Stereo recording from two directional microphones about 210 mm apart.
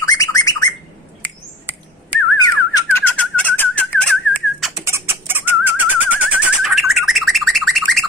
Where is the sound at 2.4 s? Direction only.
20° left (ahead or behind).